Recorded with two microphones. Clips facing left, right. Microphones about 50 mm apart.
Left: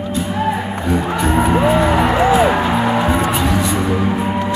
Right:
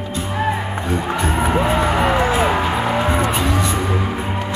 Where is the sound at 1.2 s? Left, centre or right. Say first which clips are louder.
Left 5 dB; left.